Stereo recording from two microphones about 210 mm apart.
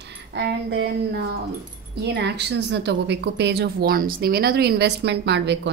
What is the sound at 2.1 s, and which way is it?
A woman's voice, 55° right (ahead or behind).